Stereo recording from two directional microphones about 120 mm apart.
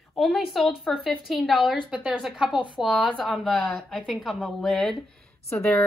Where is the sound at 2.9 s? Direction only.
10° left (ahead or behind).